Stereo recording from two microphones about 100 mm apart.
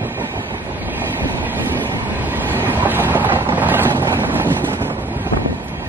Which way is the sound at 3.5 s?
20° right (ahead or behind).